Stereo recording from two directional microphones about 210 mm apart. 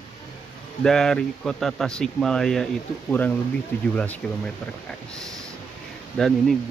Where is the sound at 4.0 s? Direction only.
5° left (ahead or behind).